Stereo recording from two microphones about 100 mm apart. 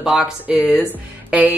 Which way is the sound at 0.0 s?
5° right (ahead or behind).